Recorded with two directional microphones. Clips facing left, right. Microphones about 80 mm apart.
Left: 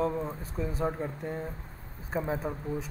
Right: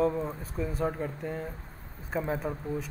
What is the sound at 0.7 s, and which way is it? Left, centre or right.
A man's voice, centre.